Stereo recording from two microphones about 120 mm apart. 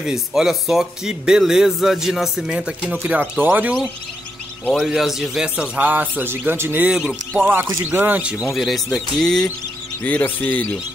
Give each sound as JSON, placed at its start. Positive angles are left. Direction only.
{"t": 0.0, "sound": "a man's voice", "side_deg": -5}
{"t": 4.8, "sound": "a man's voice", "side_deg": -5}
{"t": 6.9, "sound": "a man's voice", "side_deg": -5}
{"t": 8.5, "sound": "speech", "side_deg": 0}